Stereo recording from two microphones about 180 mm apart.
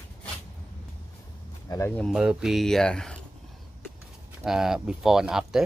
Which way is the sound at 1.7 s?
20° left (ahead or behind).